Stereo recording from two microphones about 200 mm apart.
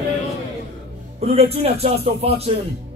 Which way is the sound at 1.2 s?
30° right (ahead or behind).